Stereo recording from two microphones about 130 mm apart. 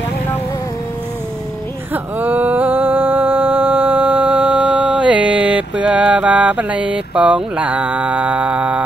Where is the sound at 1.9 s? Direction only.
15° right (ahead or behind).